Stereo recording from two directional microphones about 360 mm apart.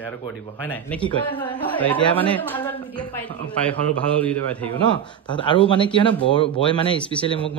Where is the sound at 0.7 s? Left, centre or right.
Centre.